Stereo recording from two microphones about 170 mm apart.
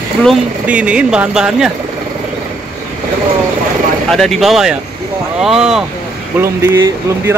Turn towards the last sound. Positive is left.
turn(degrees=-15)  # may be behind; listen again after turning